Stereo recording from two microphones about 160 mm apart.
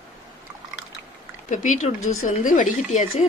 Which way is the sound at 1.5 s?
50° left (ahead or behind).